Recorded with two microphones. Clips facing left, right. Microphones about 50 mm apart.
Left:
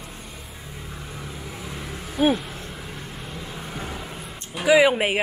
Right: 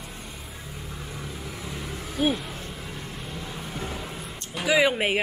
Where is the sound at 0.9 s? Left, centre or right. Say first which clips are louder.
Left 1 dB; centre.